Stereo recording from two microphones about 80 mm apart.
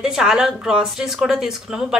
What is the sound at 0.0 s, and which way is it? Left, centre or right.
A woman's voice, centre.